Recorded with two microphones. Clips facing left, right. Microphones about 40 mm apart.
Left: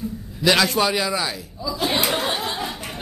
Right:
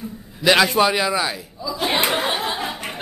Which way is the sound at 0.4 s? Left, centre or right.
Centre.